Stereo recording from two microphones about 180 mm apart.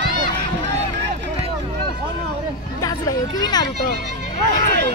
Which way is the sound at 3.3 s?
20° left (ahead or behind).